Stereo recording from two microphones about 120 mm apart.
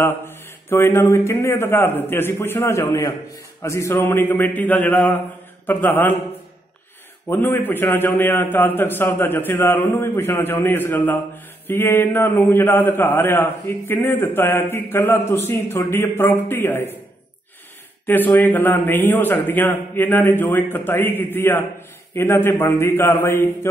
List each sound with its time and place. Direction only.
0.0 s a man's voice: 20° left (ahead or behind)
7.2 s a man's voice: 20° left (ahead or behind)
18.0 s a man's voice: 15° left (ahead or behind)